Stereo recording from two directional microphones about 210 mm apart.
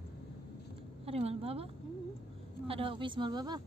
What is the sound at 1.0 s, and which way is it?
A woman's voice, 30° right (ahead or behind).